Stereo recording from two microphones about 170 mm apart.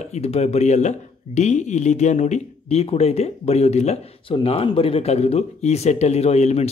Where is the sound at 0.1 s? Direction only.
40° left (ahead or behind).